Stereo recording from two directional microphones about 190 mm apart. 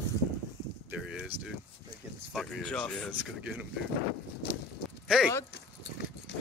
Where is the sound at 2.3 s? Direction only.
5° left (ahead or behind).